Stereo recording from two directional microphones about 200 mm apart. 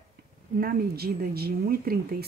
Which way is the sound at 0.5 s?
50° right (ahead or behind).